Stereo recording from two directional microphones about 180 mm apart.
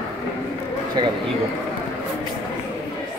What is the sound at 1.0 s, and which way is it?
Speech, 25° right (ahead or behind).